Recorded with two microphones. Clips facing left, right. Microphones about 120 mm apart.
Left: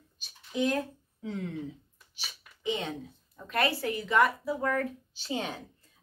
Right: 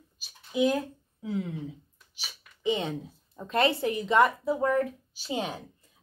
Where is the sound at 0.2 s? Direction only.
5° right (ahead or behind).